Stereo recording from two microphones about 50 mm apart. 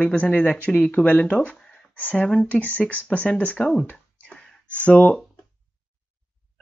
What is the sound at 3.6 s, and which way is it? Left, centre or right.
Speech, centre.